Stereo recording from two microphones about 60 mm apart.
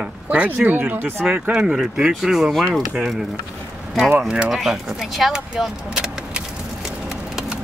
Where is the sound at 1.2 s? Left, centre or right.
Centre.